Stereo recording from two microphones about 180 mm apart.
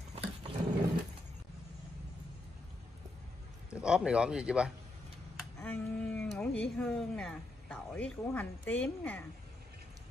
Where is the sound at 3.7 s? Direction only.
5° right (ahead or behind).